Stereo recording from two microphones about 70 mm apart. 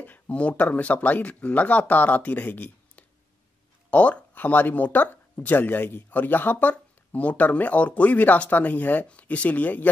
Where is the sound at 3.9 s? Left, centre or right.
Centre.